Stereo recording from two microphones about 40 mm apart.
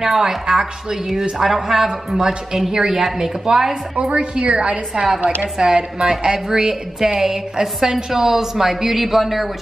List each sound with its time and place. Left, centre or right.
0.0 s a woman's voice: centre
3.9 s a woman's voice: right
5.6 s a woman's voice: centre